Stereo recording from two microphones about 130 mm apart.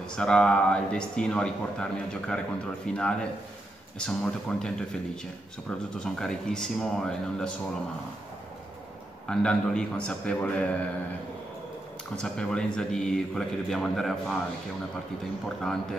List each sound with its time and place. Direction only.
0.0 s a man's voice: 5° left (ahead or behind)
5.9 s a man's voice: 5° left (ahead or behind)
9.3 s speech: 5° left (ahead or behind)
12.2 s a man's voice: 5° left (ahead or behind)
15.4 s a man's voice: 5° left (ahead or behind)